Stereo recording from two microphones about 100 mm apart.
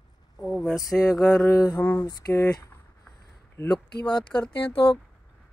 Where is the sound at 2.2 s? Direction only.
20° left (ahead or behind).